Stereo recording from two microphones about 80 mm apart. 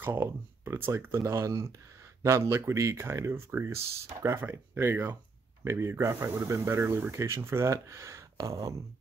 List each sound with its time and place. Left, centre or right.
0.0 s speech: right
4.4 s speech: right